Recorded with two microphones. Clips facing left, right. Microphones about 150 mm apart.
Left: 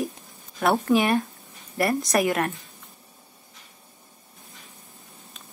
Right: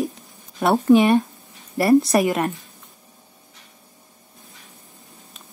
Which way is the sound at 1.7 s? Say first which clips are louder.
Right 8 dB; 30° right (ahead or behind).